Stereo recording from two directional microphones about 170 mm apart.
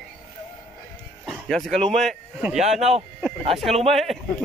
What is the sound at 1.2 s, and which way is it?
Speech, centre (ahead or behind).